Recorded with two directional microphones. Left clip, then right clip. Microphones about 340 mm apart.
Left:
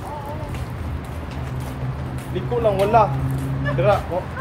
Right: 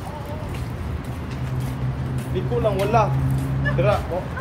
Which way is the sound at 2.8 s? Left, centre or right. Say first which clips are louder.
Left 5 dB; left.